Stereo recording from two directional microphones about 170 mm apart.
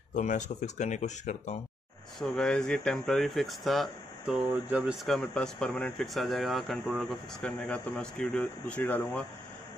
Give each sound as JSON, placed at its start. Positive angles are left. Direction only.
{"t": 0.1, "sound": "speech", "side_deg": 45}
{"t": 2.1, "sound": "speech", "side_deg": 5}